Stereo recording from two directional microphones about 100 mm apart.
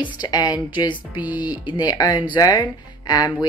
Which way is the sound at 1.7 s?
40° left (ahead or behind).